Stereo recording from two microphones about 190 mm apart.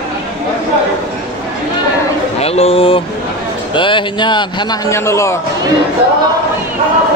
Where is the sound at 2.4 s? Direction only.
30° left (ahead or behind); by 5.4 s 15° left (ahead or behind).